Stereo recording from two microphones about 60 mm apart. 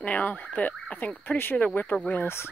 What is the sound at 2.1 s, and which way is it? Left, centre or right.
Speech, left.